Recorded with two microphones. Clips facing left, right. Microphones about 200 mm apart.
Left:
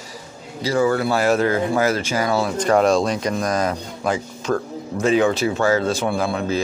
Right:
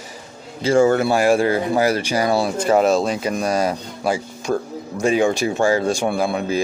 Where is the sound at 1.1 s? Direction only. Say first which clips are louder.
Right 2 dB; 10° right (ahead or behind).